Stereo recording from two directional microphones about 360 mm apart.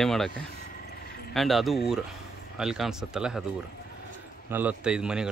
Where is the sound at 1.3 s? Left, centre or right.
Centre.